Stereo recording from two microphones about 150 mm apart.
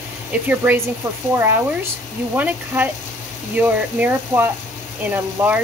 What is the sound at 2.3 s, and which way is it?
Speech, 10° right (ahead or behind).